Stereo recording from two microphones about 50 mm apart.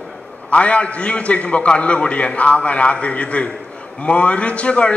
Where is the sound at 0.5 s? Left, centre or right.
Left.